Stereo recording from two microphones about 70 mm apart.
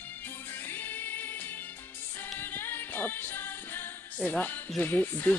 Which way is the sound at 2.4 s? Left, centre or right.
Left.